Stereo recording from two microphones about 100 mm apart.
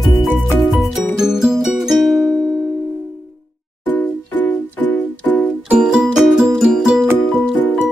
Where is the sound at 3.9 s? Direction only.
20° left (ahead or behind).